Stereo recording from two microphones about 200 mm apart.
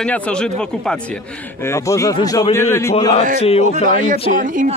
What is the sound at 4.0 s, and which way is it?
Speech, 40° right (ahead or behind).